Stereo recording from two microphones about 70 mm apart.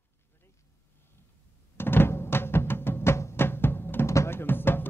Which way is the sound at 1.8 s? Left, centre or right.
Left.